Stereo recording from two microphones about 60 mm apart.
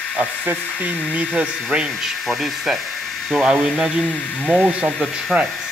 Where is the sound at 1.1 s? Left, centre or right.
Right.